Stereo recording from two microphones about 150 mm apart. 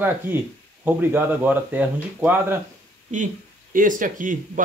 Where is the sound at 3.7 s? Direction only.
65° right (ahead or behind).